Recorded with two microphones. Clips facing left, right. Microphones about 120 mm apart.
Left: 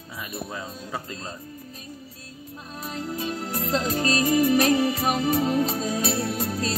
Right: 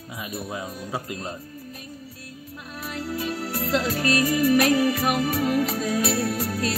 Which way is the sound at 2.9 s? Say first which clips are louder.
Right 1 dB; 30° left (ahead or behind).